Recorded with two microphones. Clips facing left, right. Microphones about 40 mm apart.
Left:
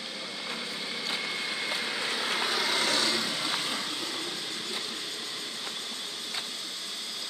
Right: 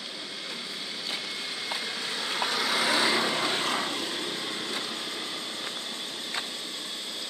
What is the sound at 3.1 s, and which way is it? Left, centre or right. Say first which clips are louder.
Vehicle: right 4 dB; right.